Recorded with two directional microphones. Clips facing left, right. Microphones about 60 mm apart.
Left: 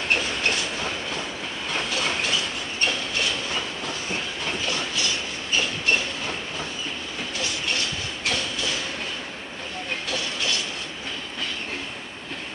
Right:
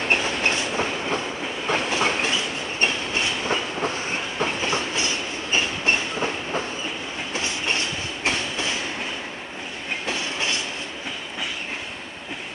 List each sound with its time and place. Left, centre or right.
0.1 s train: right
10.0 s train: right